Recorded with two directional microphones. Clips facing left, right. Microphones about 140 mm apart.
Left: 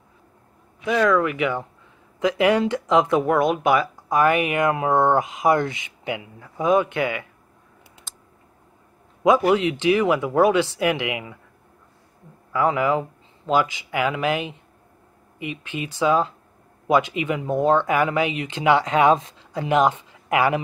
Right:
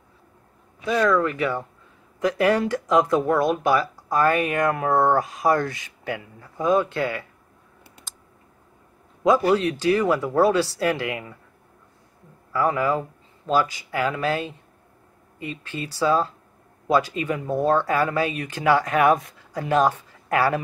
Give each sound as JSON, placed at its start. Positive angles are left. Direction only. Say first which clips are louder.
{"t": 1.1, "sound": "speech", "louder": "left 1 dB", "side_deg": 15}
{"t": 9.2, "sound": "speech", "louder": "left 1 dB", "side_deg": 20}
{"t": 12.5, "sound": "speech", "louder": "left 2 dB", "side_deg": 20}